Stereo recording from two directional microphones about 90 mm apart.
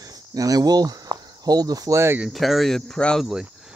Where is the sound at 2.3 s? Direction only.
Centre (ahead or behind).